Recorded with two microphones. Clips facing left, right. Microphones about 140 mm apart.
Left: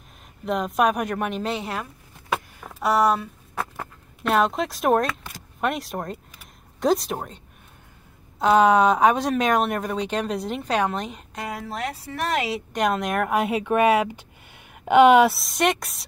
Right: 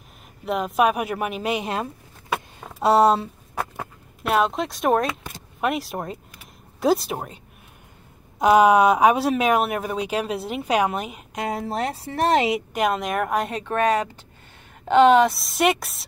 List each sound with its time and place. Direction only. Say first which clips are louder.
0.5 s speech: right 1 dB; 5° right (ahead or behind); by 1.9 s 20° right (ahead or behind)
2.6 s a sound: right 4 dB; 25° right (ahead or behind)
3.5 s a sound: right 1 dB; 5° right (ahead or behind)
5.6 s speech: right 1 dB; centre (ahead or behind)
8.4 s speech: right 2 dB; 10° right (ahead or behind)
11.3 s speech: right 6 dB; 25° right (ahead or behind)
12.7 s speech: left 4 dB; centre (ahead or behind)
15.3 s speech: right 2 dB; centre (ahead or behind)